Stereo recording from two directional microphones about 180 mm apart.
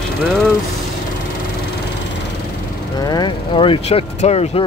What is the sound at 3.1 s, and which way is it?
Speech, 25° left (ahead or behind).